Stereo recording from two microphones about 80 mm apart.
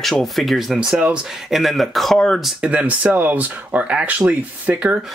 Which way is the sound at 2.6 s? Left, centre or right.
Centre.